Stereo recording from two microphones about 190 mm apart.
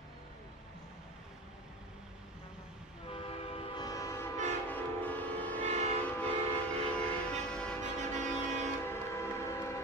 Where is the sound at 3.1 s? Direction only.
30° left (ahead or behind); by 5.6 s 10° left (ahead or behind).